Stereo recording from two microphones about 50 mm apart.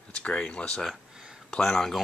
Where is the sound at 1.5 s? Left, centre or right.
Centre.